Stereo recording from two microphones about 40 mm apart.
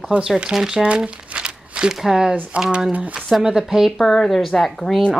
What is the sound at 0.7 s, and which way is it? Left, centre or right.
Crumpling, right.